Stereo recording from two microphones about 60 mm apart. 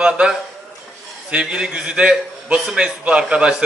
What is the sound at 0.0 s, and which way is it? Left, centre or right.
A man's voice, centre.